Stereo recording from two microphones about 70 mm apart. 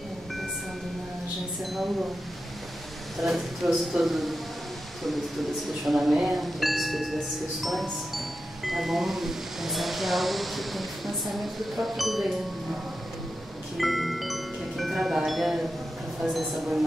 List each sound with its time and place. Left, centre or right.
1.6 s speech: centre
3.2 s speech: centre
5.9 s speech: centre
13.7 s music: centre
16.3 s speech: centre